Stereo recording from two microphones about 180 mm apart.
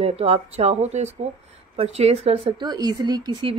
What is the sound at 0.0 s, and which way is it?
A woman's voice, 35° right (ahead or behind).